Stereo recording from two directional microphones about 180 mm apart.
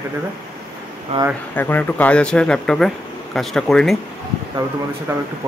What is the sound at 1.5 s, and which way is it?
Speech, 10° left (ahead or behind).